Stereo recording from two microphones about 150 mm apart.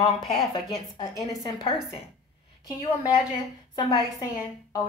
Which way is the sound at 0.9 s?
25° left (ahead or behind).